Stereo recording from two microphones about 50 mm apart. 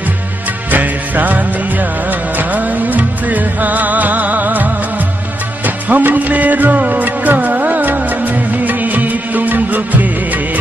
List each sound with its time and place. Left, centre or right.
0.7 s music: right
5.9 s music: right